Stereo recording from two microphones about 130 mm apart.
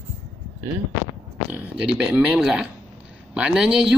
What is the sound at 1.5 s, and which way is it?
A man's voice, 10° right (ahead or behind).